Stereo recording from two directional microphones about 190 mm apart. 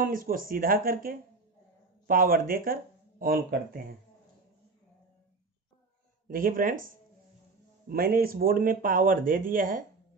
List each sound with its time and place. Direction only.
0.0 s speech: 45° right (ahead or behind)
6.2 s speech: 45° right (ahead or behind)
7.9 s speech: 50° right (ahead or behind)